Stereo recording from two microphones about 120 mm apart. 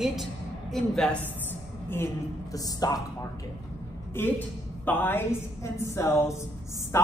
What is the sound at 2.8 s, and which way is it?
Speech, 35° left (ahead or behind).